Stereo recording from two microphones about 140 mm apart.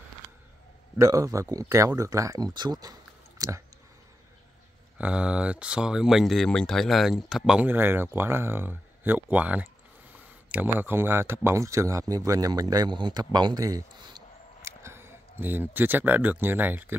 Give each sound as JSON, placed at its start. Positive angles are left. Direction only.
{"t": 0.9, "sound": "a man's voice", "side_deg": -25}
{"t": 4.9, "sound": "a man's voice", "side_deg": -10}
{"t": 14.6, "sound": "speech", "side_deg": -20}